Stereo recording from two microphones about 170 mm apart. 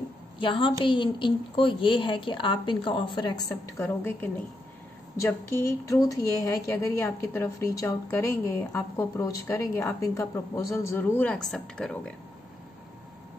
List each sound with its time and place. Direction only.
0.4 s a woman's voice: 30° left (ahead or behind)
3.8 s a woman's voice: 10° left (ahead or behind)